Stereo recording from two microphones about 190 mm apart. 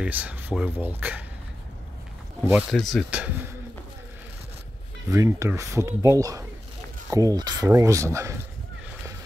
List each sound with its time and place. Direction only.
0.0 s speech: 10° right (ahead or behind)
2.7 s speech: centre (ahead or behind)
5.1 s speech: 15° right (ahead or behind)